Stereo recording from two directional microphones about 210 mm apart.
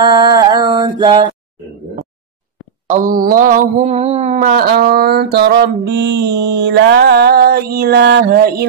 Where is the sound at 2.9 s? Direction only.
40° right (ahead or behind).